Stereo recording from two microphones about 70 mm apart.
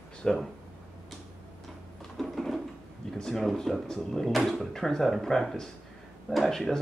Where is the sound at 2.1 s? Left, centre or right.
Centre.